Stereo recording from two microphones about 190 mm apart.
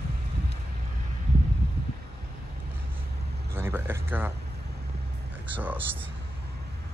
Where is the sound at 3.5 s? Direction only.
15° right (ahead or behind).